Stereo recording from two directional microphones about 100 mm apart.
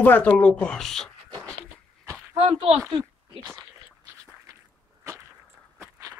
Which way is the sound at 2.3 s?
75° right (ahead or behind).